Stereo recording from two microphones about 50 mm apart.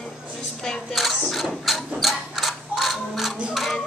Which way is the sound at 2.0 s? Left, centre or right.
Centre.